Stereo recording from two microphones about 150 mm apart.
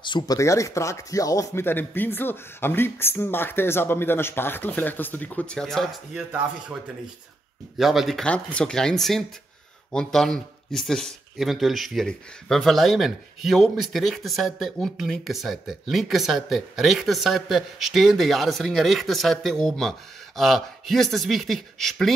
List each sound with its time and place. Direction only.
0.0 s speech: 30° left (ahead or behind)
0.4 s speech: 20° left (ahead or behind); by 5.9 s 5° left (ahead or behind)
6.1 s speech: 10° right (ahead or behind)